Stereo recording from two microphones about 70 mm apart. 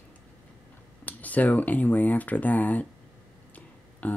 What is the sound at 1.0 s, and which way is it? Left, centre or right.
Speech, left.